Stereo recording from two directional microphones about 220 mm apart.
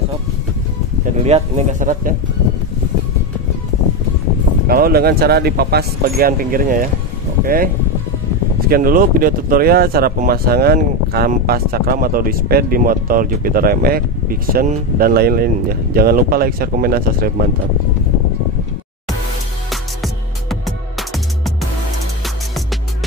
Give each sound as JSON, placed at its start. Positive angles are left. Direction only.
{"t": 1.2, "sound": "speech", "side_deg": -30}
{"t": 4.6, "sound": "speech", "side_deg": -40}
{"t": 19.7, "sound": "music", "side_deg": 0}